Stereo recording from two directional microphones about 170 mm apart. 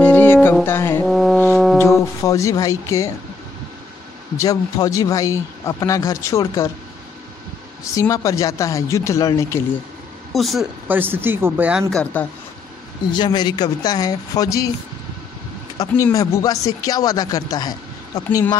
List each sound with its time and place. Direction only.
0.0 s music: 10° left (ahead or behind)
0.7 s speech: 15° left (ahead or behind)
1.0 s music: centre (ahead or behind)
2.2 s speech: 20° left (ahead or behind)
4.4 s speech: 20° left (ahead or behind)
7.9 s speech: 20° left (ahead or behind)
10.3 s speech: centre (ahead or behind)
11.9 s speech: 5° left (ahead or behind)
13.1 s speech: 25° left (ahead or behind)
15.8 s speech: 20° left (ahead or behind)